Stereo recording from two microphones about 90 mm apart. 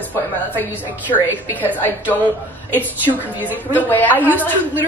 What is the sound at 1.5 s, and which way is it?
Speech, 20° left (ahead or behind).